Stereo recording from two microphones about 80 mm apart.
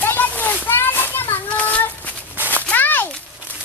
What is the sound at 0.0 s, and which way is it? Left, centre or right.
Children playing, left.